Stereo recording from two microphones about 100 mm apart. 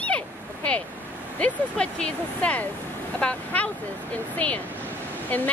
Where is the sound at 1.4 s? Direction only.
10° left (ahead or behind).